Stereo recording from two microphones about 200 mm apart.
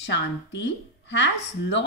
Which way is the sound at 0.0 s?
60° left (ahead or behind).